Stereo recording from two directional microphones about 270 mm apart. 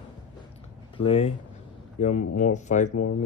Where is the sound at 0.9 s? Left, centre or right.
Left.